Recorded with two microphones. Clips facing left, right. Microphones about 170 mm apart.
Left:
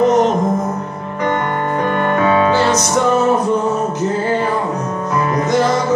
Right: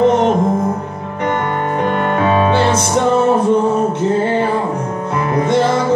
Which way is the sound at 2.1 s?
25° right (ahead or behind).